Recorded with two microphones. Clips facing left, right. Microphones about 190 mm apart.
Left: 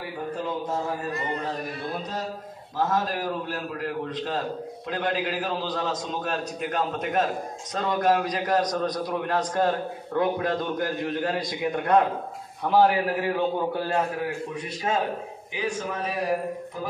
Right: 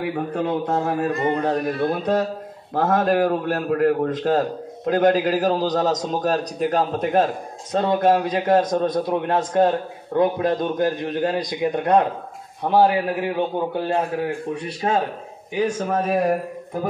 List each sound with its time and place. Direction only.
0.0 s a man's voice: 65° right (ahead or behind); by 14.0 s 25° right (ahead or behind)
14.8 s a man's voice: 45° right (ahead or behind)